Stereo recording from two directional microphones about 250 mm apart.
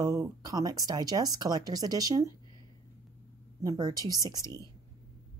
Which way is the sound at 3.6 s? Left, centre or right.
Centre.